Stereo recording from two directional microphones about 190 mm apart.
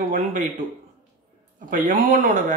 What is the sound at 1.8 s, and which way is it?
Speech, 45° right (ahead or behind).